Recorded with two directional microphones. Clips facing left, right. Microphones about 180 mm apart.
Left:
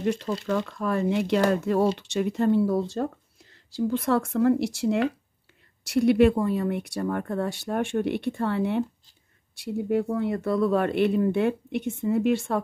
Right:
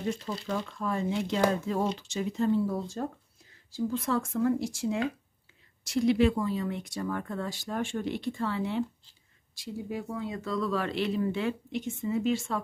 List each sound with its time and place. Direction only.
0.0 s speech: 70° left (ahead or behind)